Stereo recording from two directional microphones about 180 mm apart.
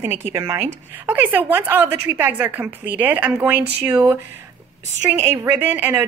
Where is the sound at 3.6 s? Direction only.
65° right (ahead or behind).